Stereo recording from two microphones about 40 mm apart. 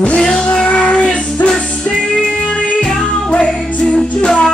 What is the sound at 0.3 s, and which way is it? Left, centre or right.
Music, centre.